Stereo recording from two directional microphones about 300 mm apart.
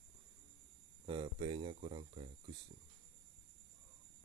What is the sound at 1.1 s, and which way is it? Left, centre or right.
Speech, centre.